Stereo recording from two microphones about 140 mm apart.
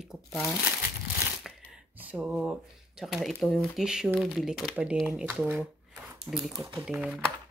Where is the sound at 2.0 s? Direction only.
10° right (ahead or behind).